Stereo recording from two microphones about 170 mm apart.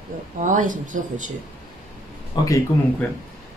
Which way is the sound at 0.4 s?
50° right (ahead or behind).